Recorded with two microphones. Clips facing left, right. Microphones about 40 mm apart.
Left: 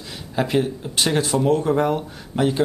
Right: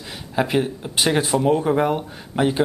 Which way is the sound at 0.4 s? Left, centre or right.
Centre.